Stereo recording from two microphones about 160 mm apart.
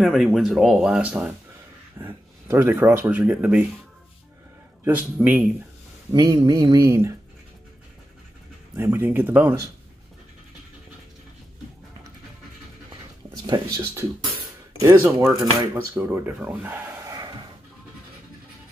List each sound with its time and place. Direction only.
0.0 s speech: centre (ahead or behind)
4.8 s speech: 10° right (ahead or behind)
6.1 s speech: 25° right (ahead or behind)
8.7 s speech: 15° right (ahead or behind)
13.5 s speech: 20° right (ahead or behind)